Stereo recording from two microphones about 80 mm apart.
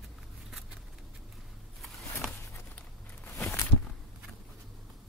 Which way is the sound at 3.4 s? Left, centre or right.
Left.